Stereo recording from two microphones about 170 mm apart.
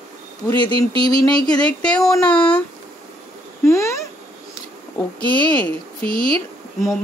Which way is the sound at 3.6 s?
15° left (ahead or behind).